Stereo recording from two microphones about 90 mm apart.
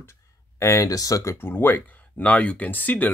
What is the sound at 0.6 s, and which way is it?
Speech, 35° left (ahead or behind).